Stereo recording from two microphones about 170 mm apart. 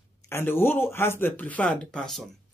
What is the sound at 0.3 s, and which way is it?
Speech, 15° left (ahead or behind).